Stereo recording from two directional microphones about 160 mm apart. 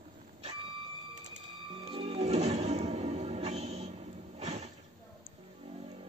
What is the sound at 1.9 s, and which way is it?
Music, 35° right (ahead or behind).